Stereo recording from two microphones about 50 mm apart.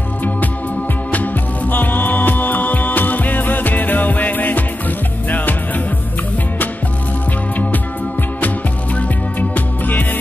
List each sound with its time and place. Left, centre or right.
1.1 s music: left
8.9 s music: left